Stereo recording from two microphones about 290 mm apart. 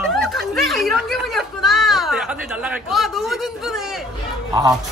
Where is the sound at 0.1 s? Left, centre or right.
Centre.